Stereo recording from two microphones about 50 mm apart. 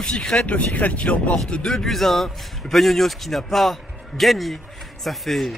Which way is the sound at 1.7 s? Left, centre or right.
Centre.